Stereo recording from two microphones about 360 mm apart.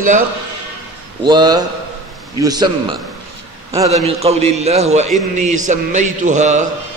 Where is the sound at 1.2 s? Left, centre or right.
Centre.